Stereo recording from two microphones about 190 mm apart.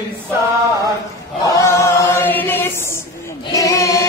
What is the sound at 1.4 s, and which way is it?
Choir, 15° left (ahead or behind).